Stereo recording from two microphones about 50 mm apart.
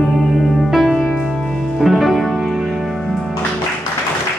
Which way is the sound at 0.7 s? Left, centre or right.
Centre.